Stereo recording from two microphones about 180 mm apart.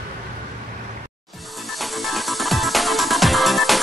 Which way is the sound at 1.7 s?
Centre (ahead or behind).